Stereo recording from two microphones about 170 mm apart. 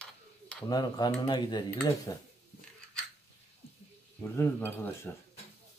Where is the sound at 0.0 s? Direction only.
5° left (ahead or behind).